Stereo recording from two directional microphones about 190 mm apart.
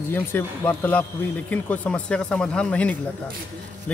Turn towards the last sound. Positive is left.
turn(degrees=5)  # may be behind; listen again after turning